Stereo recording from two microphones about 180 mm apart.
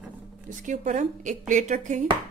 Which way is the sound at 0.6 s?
45° right (ahead or behind).